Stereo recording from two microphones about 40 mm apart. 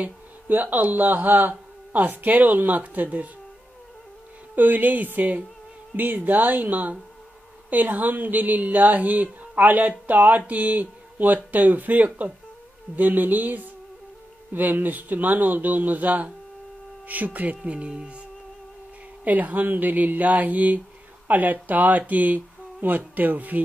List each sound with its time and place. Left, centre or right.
0.0 s speech: right
4.6 s speech: right
17.6 s speech: right
19.2 s speech: right